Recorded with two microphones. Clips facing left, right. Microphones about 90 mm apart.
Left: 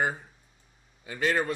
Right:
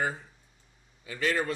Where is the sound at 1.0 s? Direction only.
35° left (ahead or behind).